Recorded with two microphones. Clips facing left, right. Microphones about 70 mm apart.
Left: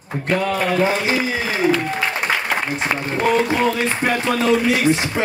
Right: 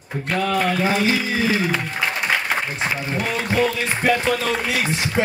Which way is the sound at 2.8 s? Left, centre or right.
Left.